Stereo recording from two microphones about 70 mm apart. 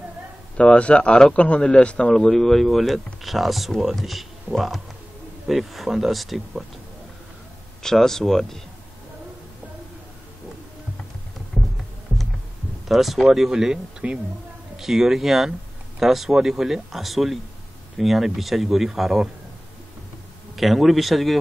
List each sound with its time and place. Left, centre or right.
0.6 s speech: centre
2.1 s speech: centre
7.8 s speech: centre
12.8 s speech: centre
20.5 s speech: centre